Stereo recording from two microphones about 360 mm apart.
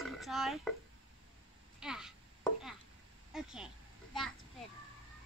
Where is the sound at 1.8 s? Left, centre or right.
Centre.